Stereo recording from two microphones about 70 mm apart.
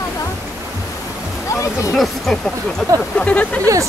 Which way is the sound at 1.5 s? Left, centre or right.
Left.